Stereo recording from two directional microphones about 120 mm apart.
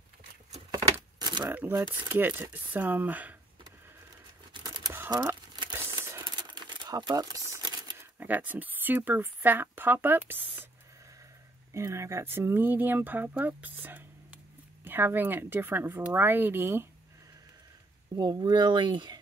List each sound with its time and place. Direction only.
1.2 s crumpling: 35° right (ahead or behind)
1.5 s speech: 15° right (ahead or behind)
4.6 s typing: 40° right (ahead or behind)
5.1 s crumpling: 35° right (ahead or behind)
5.9 s typewriter: 40° right (ahead or behind)
8.0 s speech: 15° right (ahead or behind)
11.7 s speech: 25° right (ahead or behind)
18.1 s speech: 35° right (ahead or behind)